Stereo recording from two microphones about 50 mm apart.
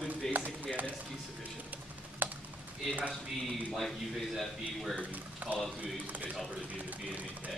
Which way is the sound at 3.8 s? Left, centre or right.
Centre.